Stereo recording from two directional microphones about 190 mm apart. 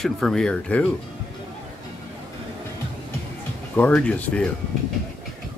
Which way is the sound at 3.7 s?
5° left (ahead or behind).